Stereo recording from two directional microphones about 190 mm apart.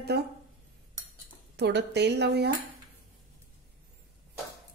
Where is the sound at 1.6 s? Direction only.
65° right (ahead or behind).